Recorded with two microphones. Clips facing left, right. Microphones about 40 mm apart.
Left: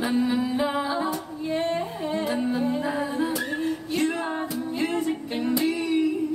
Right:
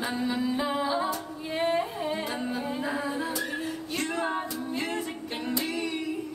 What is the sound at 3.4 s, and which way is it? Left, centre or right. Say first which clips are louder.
Music: left 5 dB; centre.